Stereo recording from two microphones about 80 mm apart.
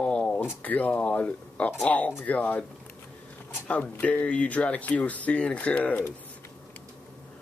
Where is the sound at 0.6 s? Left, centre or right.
Centre.